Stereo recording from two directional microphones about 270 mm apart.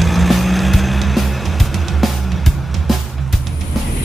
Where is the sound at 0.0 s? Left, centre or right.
Centre.